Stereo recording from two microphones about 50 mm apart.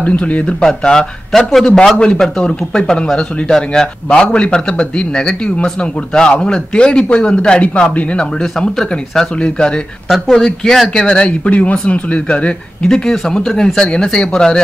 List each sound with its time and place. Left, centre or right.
0.0 s speech: left
0.8 s speech: centre
12.9 s speech: centre